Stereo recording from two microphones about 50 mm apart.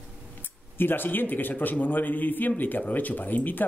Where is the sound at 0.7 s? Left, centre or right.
Left.